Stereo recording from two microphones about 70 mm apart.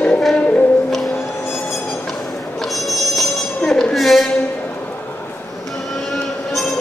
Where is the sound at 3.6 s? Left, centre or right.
Centre.